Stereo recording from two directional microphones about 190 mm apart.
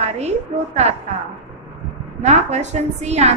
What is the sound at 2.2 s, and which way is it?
A woman's voice, 35° right (ahead or behind).